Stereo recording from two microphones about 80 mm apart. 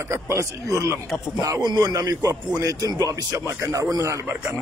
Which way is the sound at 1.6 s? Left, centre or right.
Right.